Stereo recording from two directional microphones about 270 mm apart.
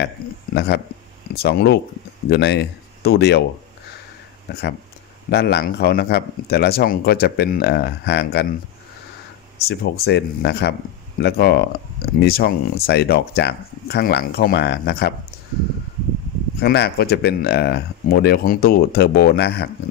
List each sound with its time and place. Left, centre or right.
0.2 s a sound: left
0.6 s speech: left
5.3 s speech: left
9.7 s speech: left
16.5 s speech: left